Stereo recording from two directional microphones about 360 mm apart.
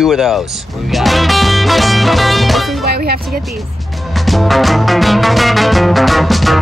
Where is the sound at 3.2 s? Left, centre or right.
Centre.